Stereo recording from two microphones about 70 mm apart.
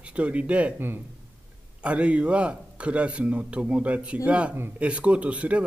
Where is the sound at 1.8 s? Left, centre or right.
Centre.